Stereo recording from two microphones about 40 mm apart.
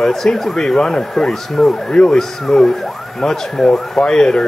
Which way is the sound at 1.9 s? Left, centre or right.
Centre.